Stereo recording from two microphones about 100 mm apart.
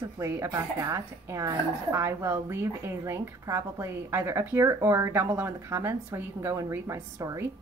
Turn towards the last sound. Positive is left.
turn(degrees=-30)  # may be behind; listen again after turning